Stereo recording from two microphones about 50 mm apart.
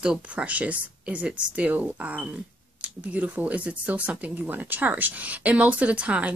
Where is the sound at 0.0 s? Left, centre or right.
Right.